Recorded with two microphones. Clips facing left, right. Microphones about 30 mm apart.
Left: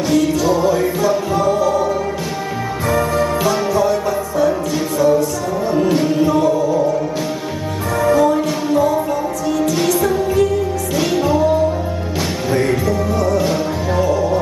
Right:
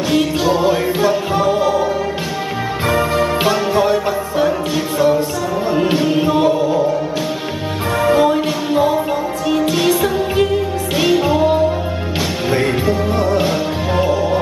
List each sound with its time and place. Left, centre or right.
0.1 s music: right
2.9 s music: right
8.0 s music: right